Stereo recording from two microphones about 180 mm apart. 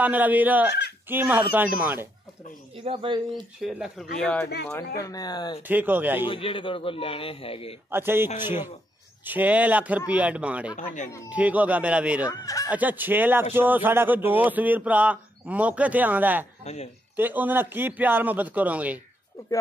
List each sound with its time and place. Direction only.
0.0 s a man's voice: 10° right (ahead or behind)
2.8 s speech: 30° right (ahead or behind)
3.6 s speech: centre (ahead or behind)
5.0 s speech: 20° left (ahead or behind)
5.7 s a man's voice: 10° right (ahead or behind)
6.2 s a man's voice: 30° left (ahead or behind)
7.9 s a man's voice: 10° right (ahead or behind)
10.8 s speech: 45° left (ahead or behind)
11.2 s a man's voice: 10° right (ahead or behind)
12.3 s speech: 20° left (ahead or behind)
12.6 s a man's voice: 10° right (ahead or behind)
16.6 s a man's voice: 35° left (ahead or behind)
17.2 s a man's voice: 10° right (ahead or behind)